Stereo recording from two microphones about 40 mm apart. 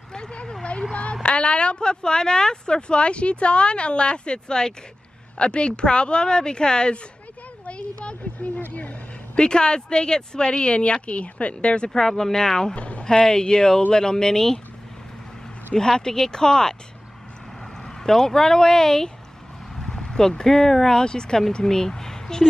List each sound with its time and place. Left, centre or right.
0.1 s speech: left
8.7 s a sound: left
9.4 s speech: left
11.9 s speech: centre
12.7 s speech: left
13.0 s speech: centre
15.7 s speech: centre
17.8 s speech: centre